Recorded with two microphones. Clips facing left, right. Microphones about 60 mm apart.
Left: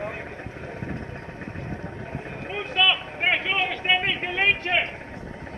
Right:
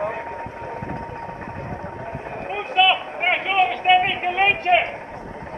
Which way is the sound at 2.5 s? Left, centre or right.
Right.